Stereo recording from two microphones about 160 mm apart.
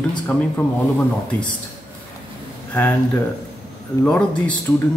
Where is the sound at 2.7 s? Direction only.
10° left (ahead or behind).